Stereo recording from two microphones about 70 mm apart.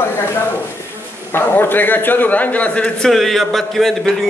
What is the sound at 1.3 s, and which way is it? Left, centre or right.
A woman's voice, left.